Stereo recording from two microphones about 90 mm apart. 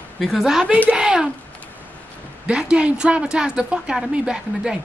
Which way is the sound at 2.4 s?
10° right (ahead or behind).